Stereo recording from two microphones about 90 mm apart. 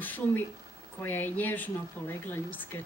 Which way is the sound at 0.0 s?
20° left (ahead or behind).